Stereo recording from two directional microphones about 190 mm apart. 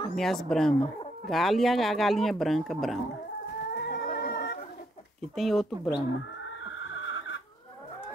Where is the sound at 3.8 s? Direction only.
55° left (ahead or behind).